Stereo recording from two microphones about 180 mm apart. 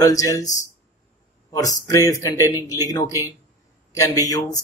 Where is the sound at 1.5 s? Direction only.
20° left (ahead or behind).